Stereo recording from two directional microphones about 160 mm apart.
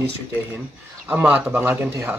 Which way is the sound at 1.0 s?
10° right (ahead or behind).